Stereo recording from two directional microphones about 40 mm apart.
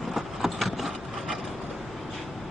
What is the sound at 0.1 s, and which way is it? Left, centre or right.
Vehicle, centre.